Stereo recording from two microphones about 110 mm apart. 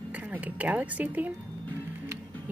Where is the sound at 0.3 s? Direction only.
15° right (ahead or behind).